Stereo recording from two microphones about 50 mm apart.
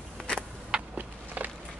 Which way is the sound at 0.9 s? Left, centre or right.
Right.